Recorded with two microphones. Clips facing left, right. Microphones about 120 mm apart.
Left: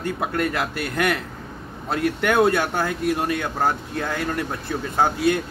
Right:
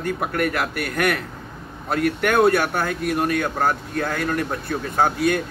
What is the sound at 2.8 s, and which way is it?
Speech, 25° left (ahead or behind).